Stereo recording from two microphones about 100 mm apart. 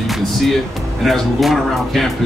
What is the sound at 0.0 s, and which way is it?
Music, centre (ahead or behind).